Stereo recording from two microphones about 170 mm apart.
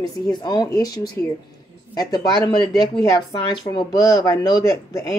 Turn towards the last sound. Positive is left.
turn(degrees=20)  # may be behind; listen again after turning